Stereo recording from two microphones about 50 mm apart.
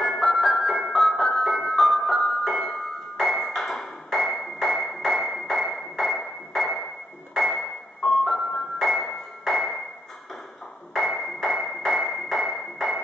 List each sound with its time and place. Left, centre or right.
0.0 s music: centre
3.2 s ping: centre
7.5 s music: centre
8.2 s music: centre
10.9 s a sound: centre